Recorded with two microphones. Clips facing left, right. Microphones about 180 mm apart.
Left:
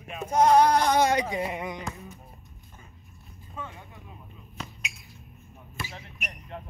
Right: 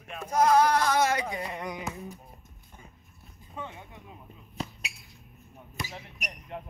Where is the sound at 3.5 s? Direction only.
20° right (ahead or behind).